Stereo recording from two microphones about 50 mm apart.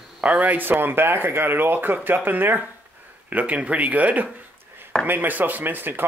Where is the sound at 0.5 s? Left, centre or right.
Right.